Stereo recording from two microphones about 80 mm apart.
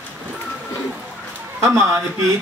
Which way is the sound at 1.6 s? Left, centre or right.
Right.